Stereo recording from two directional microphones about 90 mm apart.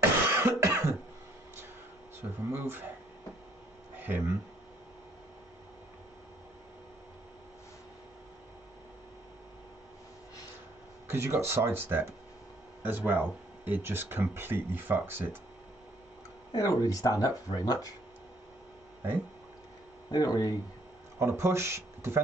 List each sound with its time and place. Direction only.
0.3 s cough: 30° right (ahead or behind)
2.5 s speech: 25° right (ahead or behind)
4.0 s speech: 20° right (ahead or behind)
11.1 s speech: 30° right (ahead or behind)
16.5 s speech: 40° left (ahead or behind)
20.1 s speech: 45° left (ahead or behind)
21.2 s speech: 30° right (ahead or behind)